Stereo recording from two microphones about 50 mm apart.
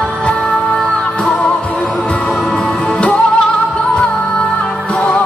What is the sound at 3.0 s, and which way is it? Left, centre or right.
Music, left.